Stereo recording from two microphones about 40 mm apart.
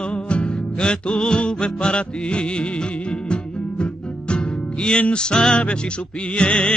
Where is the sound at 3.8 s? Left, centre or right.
Left.